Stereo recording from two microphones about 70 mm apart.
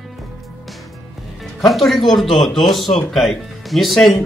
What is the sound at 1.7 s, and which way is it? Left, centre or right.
Speech, centre.